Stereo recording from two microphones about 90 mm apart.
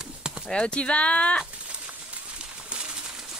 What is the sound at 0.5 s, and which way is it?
Speech, 10° left (ahead or behind).